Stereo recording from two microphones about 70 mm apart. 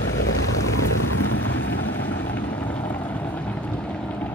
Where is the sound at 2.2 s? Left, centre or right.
Left.